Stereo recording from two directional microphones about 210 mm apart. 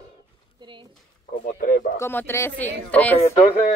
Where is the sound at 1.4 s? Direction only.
40° left (ahead or behind).